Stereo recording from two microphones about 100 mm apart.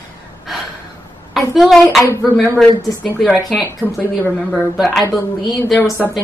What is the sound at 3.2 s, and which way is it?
Speech, centre (ahead or behind).